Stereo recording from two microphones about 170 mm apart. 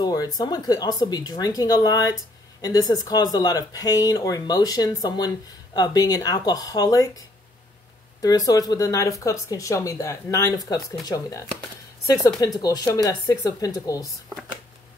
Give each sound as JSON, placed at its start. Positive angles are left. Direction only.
{"t": 0.0, "sound": "speech", "side_deg": 20}
{"t": 8.2, "sound": "speech", "side_deg": 20}